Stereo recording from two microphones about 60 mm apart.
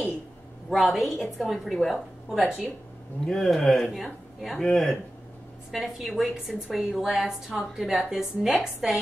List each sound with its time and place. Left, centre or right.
0.7 s a woman's voice: centre
5.7 s a woman's voice: centre